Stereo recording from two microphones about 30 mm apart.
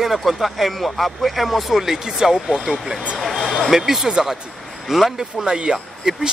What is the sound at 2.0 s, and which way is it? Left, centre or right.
Speech, centre.